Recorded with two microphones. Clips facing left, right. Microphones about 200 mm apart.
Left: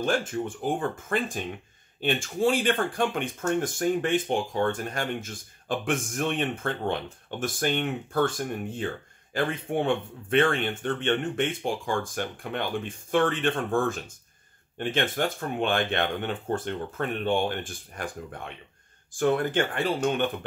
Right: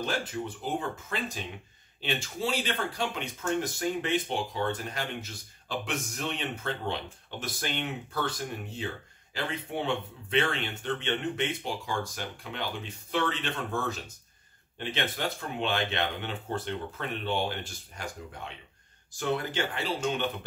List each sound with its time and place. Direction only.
0.0 s speech: 50° left (ahead or behind)